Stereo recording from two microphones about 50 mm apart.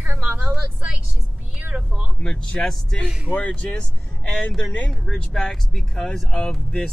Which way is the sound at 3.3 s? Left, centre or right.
Left.